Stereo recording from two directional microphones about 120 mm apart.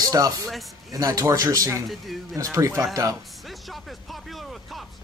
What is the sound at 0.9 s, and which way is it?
Speech, 30° right (ahead or behind).